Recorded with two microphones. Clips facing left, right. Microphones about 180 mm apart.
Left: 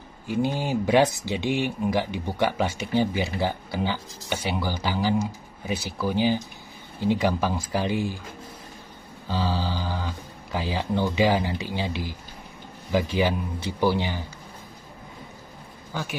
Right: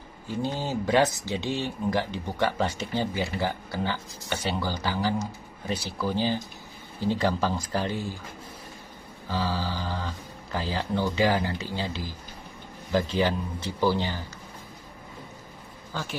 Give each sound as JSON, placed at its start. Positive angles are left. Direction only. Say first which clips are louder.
{"t": 0.4, "sound": "speech", "louder": "left 4 dB", "side_deg": 10}
{"t": 9.3, "sound": "speech", "louder": "left 2 dB", "side_deg": 15}
{"t": 13.1, "sound": "speech", "louder": "left 1 dB", "side_deg": 10}
{"t": 15.9, "sound": "speech", "louder": "left 2 dB", "side_deg": 10}